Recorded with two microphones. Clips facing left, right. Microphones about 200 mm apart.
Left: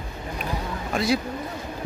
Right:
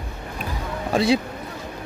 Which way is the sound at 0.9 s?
30° right (ahead or behind).